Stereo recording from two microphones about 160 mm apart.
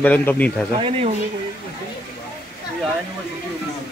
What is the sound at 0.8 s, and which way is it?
Speech, 35° right (ahead or behind).